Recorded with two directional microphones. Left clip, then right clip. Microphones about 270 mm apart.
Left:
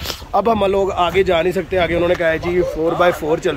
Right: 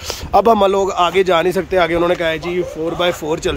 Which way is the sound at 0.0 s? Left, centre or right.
Right.